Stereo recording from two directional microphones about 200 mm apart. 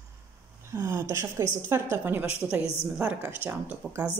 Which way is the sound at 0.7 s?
15° right (ahead or behind).